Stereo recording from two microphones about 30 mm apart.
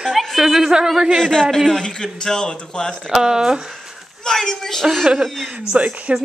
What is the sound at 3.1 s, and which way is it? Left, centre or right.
Speech, centre.